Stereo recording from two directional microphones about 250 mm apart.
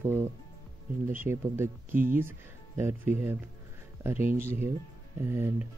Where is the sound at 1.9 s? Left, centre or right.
Right.